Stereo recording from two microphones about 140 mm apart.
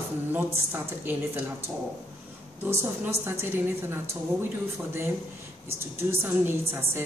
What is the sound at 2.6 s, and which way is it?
A woman's voice, 15° right (ahead or behind).